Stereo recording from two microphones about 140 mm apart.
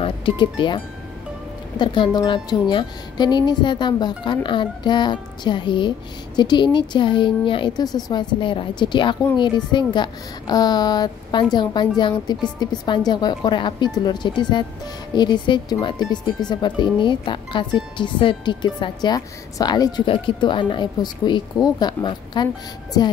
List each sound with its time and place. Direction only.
0.0 s speech: 35° left (ahead or behind)
1.8 s a woman's voice: 35° left (ahead or behind)